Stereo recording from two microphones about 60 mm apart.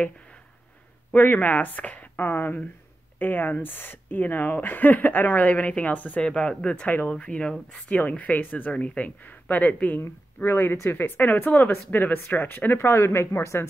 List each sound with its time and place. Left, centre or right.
1.1 s speech: left
2.1 s speech: left
10.4 s speech: left
12.8 s speech: left